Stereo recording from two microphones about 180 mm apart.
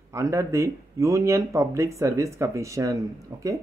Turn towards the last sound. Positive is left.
turn(degrees=-15)  # may be behind; listen again after turning